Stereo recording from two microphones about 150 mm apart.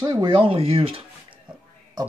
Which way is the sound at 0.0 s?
30° right (ahead or behind).